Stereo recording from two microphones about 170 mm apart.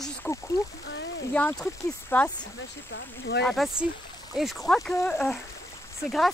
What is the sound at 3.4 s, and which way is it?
Speech, centre (ahead or behind).